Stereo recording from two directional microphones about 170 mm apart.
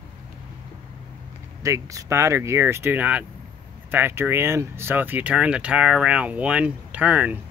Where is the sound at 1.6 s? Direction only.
20° right (ahead or behind).